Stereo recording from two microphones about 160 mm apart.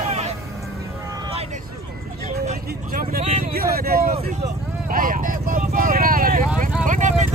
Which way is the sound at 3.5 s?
75° right (ahead or behind).